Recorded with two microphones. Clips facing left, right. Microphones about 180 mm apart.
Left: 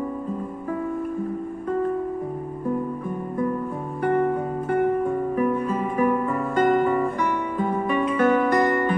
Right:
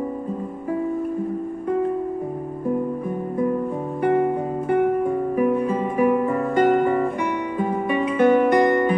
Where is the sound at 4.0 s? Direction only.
15° right (ahead or behind).